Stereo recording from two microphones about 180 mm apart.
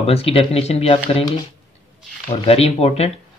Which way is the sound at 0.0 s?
35° left (ahead or behind).